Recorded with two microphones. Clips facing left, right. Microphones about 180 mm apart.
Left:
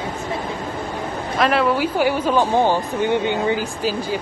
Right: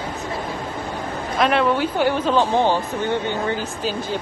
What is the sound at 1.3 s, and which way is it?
Speech, centre (ahead or behind).